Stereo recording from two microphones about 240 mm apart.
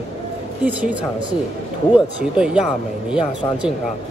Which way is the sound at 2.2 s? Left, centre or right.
Centre.